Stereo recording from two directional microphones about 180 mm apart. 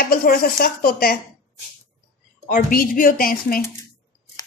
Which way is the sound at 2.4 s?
50° left (ahead or behind).